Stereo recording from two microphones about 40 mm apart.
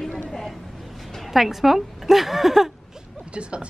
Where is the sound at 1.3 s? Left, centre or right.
Centre.